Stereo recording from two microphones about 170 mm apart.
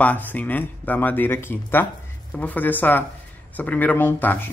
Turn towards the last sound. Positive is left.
turn(degrees=10)  # may be behind; listen again after turning